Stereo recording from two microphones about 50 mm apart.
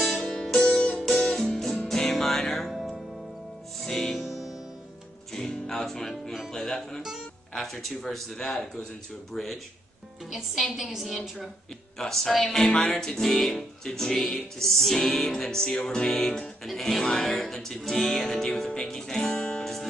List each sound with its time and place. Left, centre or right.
0.2 s music: centre
6.5 s a woman's voice: centre
8.4 s music: centre
9.3 s a woman's voice: centre
10.3 s a woman's voice: centre
12.8 s music: centre
16.6 s a woman's voice: centre
17.0 s music: centre
17.7 s a woman's voice: centre
18.0 s music: centre